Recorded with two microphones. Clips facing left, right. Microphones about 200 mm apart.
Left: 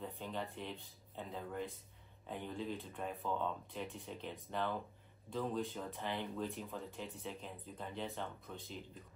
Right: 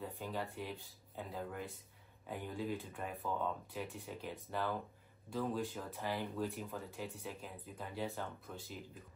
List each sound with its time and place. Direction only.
0.0 s speech: 5° right (ahead or behind)